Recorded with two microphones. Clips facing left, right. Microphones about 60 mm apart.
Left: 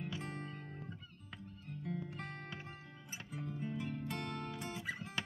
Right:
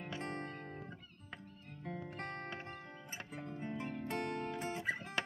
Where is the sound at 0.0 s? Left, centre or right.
Right.